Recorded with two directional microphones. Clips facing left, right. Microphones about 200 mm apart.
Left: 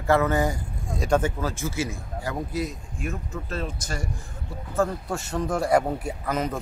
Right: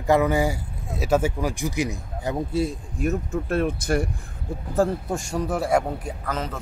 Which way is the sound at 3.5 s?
60° right (ahead or behind).